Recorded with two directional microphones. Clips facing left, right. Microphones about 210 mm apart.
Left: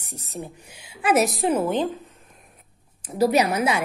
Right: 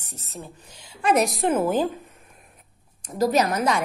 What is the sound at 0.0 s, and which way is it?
A woman's voice, 15° left (ahead or behind).